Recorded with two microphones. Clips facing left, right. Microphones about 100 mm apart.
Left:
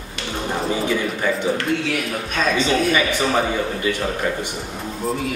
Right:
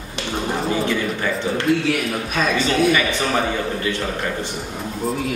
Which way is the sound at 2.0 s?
Centre (ahead or behind).